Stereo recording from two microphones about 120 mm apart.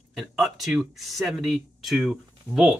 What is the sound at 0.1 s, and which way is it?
Speech, centre (ahead or behind).